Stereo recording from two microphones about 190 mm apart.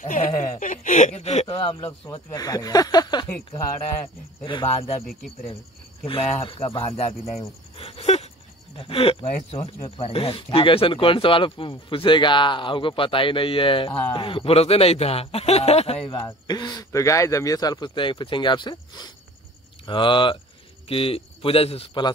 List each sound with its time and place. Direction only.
0.0 s speech: 45° left (ahead or behind); by 3.3 s 20° left (ahead or behind)
4.5 s speech: 30° left (ahead or behind)
6.0 s speech: 30° left (ahead or behind)